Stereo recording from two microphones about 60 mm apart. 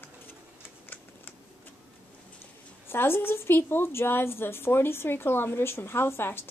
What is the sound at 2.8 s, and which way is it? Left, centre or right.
A woman's voice, left.